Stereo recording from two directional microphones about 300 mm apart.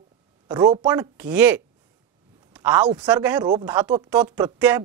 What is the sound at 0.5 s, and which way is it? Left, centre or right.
Speech, centre.